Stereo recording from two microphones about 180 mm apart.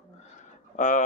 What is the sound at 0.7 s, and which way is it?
Speech, 45° left (ahead or behind).